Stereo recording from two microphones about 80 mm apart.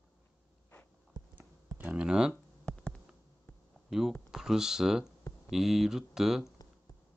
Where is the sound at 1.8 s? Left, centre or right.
Centre.